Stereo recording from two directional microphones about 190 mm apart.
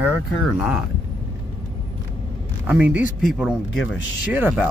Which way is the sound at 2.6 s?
10° right (ahead or behind).